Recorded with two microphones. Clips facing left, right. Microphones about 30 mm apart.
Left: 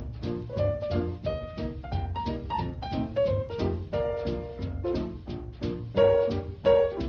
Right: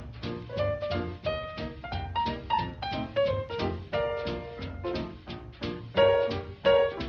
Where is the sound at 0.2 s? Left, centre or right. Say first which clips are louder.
Left 2 dB; right.